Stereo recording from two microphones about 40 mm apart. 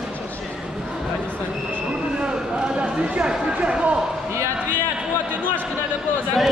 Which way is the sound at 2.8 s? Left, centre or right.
Right.